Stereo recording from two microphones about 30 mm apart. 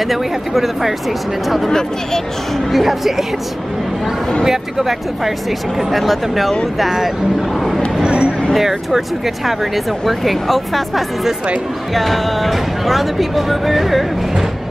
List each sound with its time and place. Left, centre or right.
0.0 s speech: centre
1.7 s speech: centre
2.5 s speech: centre
4.5 s speech: centre
5.9 s speech: centre
8.0 s a sound: right
8.5 s speech: centre